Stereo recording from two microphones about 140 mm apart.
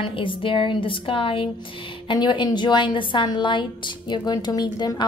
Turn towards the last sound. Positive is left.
turn(degrees=30)  # may be behind; listen again after turning